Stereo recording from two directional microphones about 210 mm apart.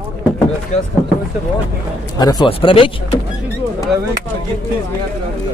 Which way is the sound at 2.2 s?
20° left (ahead or behind).